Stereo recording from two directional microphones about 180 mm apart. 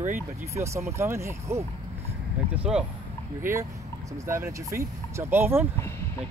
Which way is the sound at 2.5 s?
5° right (ahead or behind).